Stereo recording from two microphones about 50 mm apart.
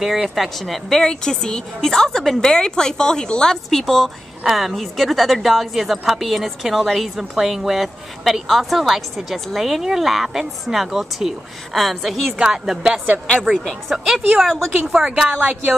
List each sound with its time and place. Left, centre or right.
0.0 s a woman's voice: centre
12.4 s a woman's voice: centre
13.5 s speech: right
13.9 s a woman's voice: centre
15.2 s speech: right